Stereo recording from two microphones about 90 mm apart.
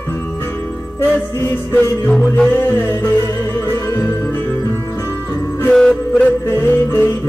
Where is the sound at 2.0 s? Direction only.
5° left (ahead or behind).